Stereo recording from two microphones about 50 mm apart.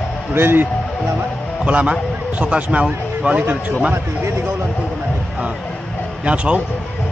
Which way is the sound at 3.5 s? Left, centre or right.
Right.